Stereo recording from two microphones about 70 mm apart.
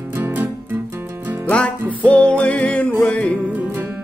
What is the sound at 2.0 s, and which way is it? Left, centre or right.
Music, centre.